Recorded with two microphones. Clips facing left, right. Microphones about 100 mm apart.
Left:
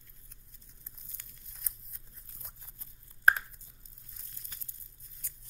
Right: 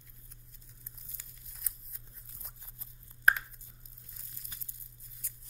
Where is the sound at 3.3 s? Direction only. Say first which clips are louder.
Left 2 dB; 30° left (ahead or behind).